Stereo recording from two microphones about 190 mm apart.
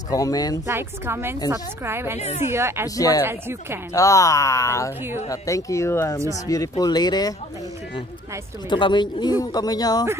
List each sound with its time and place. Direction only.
0.1 s speech: 20° left (ahead or behind)
0.7 s a woman's voice: 15° right (ahead or behind)
2.1 s a woman's voice: 35° left (ahead or behind)
2.4 s a woman's voice: 15° right (ahead or behind)
3.0 s speech: 20° left (ahead or behind)
3.3 s a woman's voice: 10° right (ahead or behind)
3.9 s speech: 15° left (ahead or behind)
8.6 s speech: 25° left (ahead or behind)